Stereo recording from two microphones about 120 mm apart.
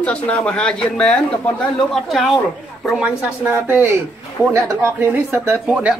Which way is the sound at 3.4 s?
15° right (ahead or behind).